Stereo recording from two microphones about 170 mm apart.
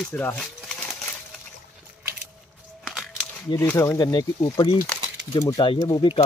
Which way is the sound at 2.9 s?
Centre (ahead or behind).